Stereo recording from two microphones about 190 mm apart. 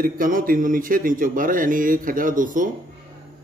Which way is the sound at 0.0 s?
45° right (ahead or behind).